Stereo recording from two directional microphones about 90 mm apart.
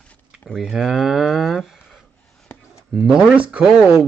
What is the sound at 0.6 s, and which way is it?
Speech, centre (ahead or behind).